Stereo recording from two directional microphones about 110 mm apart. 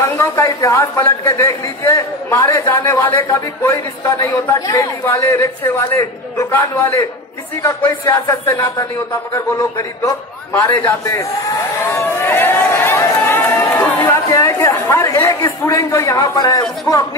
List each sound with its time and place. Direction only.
0.0 s a man's voice: 25° left (ahead or behind)
11.9 s run: 20° left (ahead or behind)
14.1 s a man's voice: 25° left (ahead or behind)